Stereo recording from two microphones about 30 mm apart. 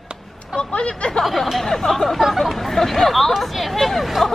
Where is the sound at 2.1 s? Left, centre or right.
Centre.